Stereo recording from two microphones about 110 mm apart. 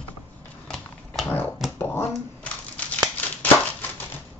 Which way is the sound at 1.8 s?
20° left (ahead or behind).